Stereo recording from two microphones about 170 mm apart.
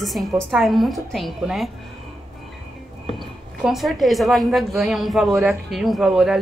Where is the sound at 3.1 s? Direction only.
Centre (ahead or behind).